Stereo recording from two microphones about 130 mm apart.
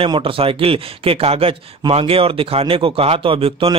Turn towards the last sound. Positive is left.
turn(degrees=-45)  # may be behind; listen again after turning